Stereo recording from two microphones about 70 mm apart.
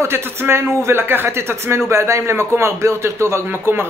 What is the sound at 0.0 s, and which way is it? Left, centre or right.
Speech, right.